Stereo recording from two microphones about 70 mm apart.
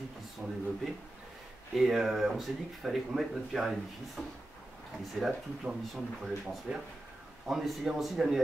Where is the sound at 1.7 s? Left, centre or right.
Centre.